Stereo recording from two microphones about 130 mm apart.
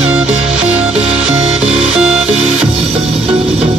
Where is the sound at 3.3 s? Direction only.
50° right (ahead or behind).